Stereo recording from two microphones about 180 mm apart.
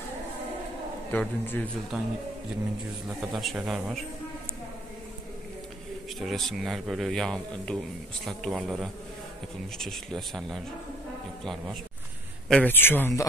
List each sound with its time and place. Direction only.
1.1 s a man's voice: 5° left (ahead or behind)
3.2 s speech: centre (ahead or behind)
6.1 s speech: centre (ahead or behind)
12.4 s a man's voice: 10° left (ahead or behind)